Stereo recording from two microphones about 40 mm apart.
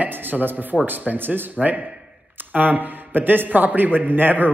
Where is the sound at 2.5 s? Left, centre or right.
Right.